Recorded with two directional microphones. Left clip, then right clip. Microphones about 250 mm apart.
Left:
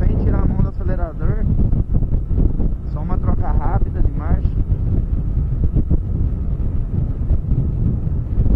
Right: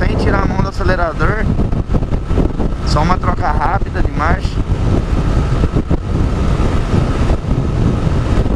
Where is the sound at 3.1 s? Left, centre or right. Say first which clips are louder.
Right 12 dB; centre.